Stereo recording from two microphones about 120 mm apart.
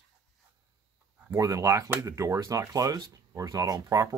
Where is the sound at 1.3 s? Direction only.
25° right (ahead or behind).